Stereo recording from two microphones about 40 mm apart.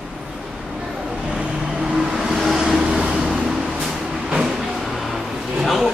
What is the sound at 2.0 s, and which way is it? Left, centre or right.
Vehicle, centre.